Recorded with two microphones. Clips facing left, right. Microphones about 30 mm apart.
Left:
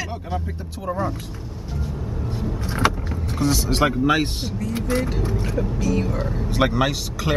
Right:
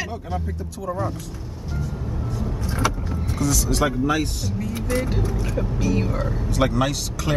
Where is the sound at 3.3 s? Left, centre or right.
Left.